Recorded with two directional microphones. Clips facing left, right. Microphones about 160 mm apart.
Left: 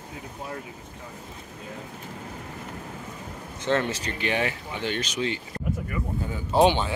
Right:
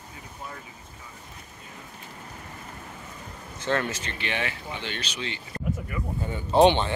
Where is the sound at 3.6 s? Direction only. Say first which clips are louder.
Left 2 dB; 20° left (ahead or behind).